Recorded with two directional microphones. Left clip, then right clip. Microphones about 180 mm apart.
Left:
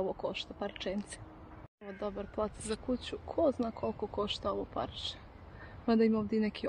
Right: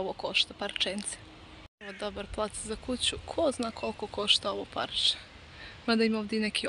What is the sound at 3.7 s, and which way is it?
Speech, 25° right (ahead or behind).